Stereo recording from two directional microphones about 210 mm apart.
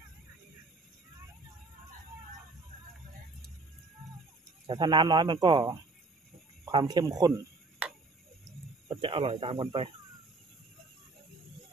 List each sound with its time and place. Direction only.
4.6 s speech: 20° right (ahead or behind)
8.8 s speech: 25° right (ahead or behind)